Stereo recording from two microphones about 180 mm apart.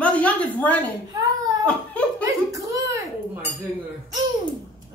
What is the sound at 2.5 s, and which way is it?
Dishes, 20° right (ahead or behind).